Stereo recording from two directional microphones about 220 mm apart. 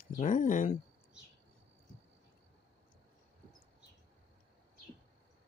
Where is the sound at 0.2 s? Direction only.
35° left (ahead or behind).